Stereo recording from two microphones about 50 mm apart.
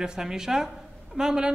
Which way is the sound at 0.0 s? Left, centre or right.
Centre.